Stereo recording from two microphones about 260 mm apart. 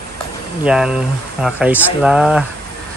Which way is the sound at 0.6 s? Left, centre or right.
Centre.